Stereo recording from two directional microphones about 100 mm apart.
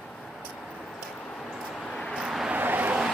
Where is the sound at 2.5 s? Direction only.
15° right (ahead or behind).